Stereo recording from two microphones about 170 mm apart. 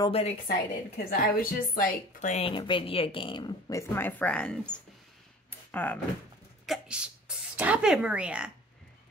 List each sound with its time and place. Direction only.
0.1 s a woman's voice: 40° left (ahead or behind)
0.9 s a woman's voice: 60° left (ahead or behind)
2.3 s speech: 30° left (ahead or behind); by 4.7 s 5° left (ahead or behind)
5.5 s a sound: 10° left (ahead or behind)
6.6 s speech: 5° right (ahead or behind)